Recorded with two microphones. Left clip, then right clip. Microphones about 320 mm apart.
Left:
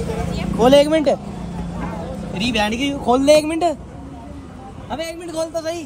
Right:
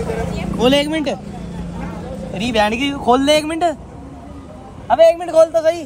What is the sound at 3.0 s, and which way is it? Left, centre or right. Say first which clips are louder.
Speech: left 1 dB; centre.